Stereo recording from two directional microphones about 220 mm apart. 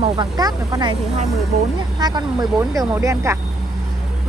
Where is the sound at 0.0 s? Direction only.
20° right (ahead or behind).